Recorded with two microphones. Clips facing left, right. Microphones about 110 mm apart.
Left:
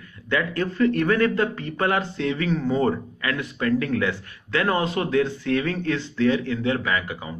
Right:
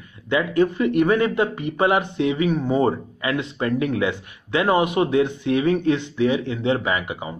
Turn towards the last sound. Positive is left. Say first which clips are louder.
# right 2 dB
turn(degrees=-20)  # may be behind; listen again after turning